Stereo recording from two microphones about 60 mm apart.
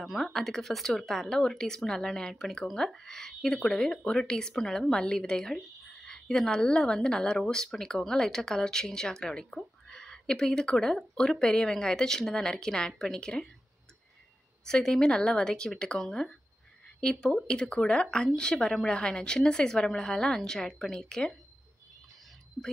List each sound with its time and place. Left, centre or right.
0.0 s speech: centre
14.6 s speech: centre
22.6 s speech: centre